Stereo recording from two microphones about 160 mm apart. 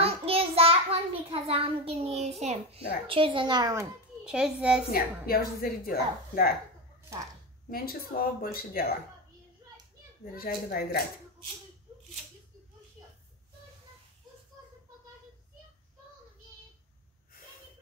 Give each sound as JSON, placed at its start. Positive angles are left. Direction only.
{"t": 0.0, "sound": "child singing", "side_deg": -40}
{"t": 3.1, "sound": "a woman's voice", "side_deg": -35}
{"t": 4.2, "sound": "a child's voice", "side_deg": -5}
{"t": 4.9, "sound": "a woman's voice", "side_deg": 70}
{"t": 7.7, "sound": "a woman's voice", "side_deg": 65}
{"t": 10.3, "sound": "a woman's voice", "side_deg": 65}
{"t": 13.0, "sound": "a sound", "side_deg": -20}